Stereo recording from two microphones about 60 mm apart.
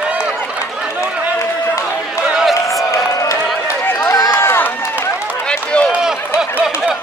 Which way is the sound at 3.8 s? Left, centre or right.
Left.